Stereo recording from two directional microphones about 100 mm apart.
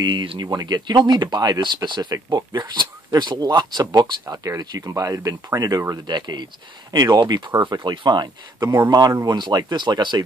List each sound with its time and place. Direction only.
0.0 s speech: 45° right (ahead or behind)
6.0 s speech: 45° right (ahead or behind)
8.5 s speech: 30° right (ahead or behind)
9.3 s speech: 45° right (ahead or behind)